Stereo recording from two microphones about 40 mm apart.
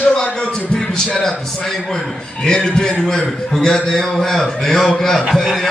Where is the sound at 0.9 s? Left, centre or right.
Centre.